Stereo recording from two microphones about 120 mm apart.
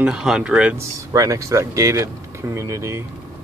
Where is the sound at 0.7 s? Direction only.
30° right (ahead or behind).